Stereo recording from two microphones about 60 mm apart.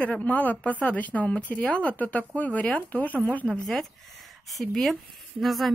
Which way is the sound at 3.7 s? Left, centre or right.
Centre.